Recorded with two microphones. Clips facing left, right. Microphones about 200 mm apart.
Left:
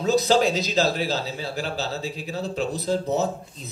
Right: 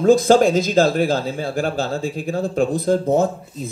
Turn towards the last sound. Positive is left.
turn(degrees=-50)  # may be behind; listen again after turning